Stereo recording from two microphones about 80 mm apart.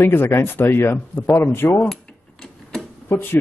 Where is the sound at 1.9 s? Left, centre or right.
Centre.